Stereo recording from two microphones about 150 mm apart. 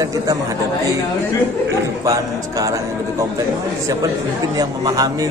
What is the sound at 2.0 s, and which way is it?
A man's voice, 20° right (ahead or behind).